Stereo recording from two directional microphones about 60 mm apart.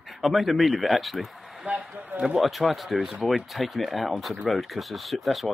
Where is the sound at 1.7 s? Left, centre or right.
Right.